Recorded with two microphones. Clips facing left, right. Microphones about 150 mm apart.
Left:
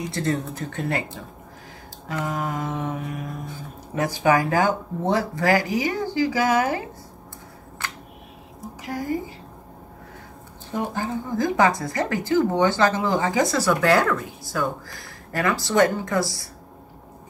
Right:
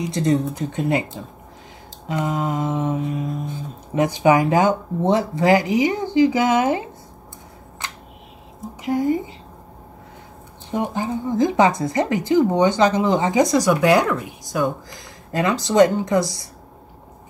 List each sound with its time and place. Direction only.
0.1 s speech: 20° right (ahead or behind)
7.8 s a sound: 20° right (ahead or behind)
10.7 s speech: 20° right (ahead or behind)